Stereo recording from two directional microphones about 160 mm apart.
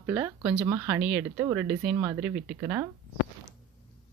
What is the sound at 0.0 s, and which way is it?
Speech, 15° right (ahead or behind).